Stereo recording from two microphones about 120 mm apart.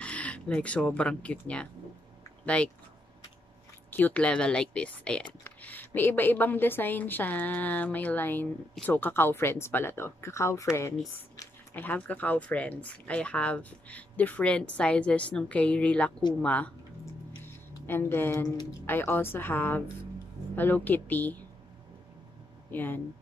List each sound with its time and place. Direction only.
0.0 s speech: 10° left (ahead or behind)
3.9 s speech: 15° left (ahead or behind)
17.8 s speech: 20° left (ahead or behind)
22.7 s speech: 15° left (ahead or behind)